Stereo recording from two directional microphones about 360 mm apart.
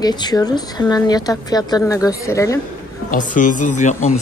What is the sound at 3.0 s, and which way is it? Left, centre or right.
Speech, left.